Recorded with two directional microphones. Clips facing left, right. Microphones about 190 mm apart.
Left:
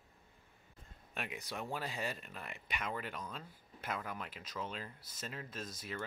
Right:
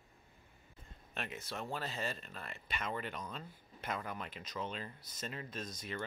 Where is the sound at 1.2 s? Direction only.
15° left (ahead or behind).